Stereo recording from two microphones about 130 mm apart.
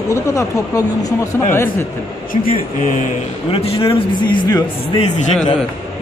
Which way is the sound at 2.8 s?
85° left.